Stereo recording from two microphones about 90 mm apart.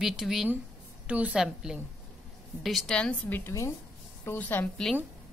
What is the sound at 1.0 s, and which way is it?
A woman's voice, 15° right (ahead or behind).